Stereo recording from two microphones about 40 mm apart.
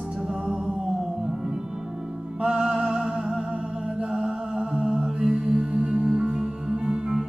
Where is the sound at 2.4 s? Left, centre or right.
Right.